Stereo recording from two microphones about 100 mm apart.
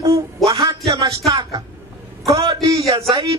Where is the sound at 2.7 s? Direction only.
35° right (ahead or behind).